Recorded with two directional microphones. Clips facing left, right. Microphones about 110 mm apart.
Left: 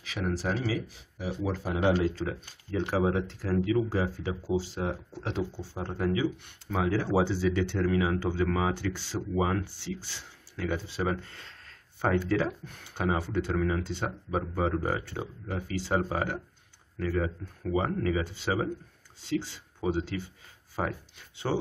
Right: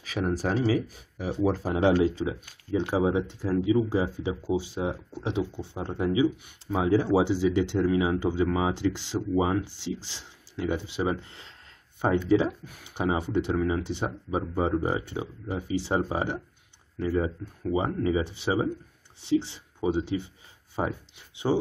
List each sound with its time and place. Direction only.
0.0 s speech: 40° right (ahead or behind)
1.3 s speech: 35° right (ahead or behind)
1.9 s speech: 15° right (ahead or behind)